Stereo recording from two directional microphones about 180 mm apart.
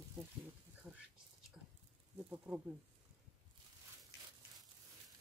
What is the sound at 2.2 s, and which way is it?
Speech, 10° right (ahead or behind).